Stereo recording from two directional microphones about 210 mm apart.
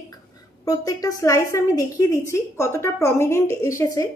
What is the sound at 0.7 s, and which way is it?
A woman's voice, 15° left (ahead or behind).